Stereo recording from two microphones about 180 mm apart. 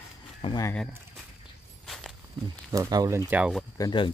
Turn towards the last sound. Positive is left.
turn(degrees=25)  # may be behind; listen again after turning